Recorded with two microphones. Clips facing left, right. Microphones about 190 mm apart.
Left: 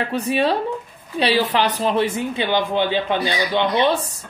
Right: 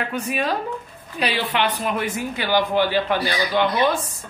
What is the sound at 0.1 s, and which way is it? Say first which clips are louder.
Speech: left 5 dB; 35° left (ahead or behind).